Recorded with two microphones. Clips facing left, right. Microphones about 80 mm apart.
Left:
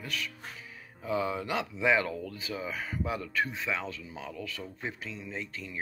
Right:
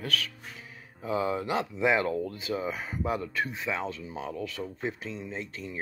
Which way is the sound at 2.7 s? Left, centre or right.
Right.